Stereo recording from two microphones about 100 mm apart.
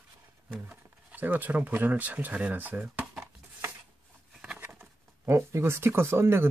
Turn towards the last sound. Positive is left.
turn(degrees=-25)  # may be behind; listen again after turning